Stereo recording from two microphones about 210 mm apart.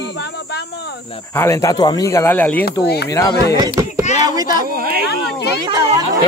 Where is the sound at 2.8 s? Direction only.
50° left (ahead or behind).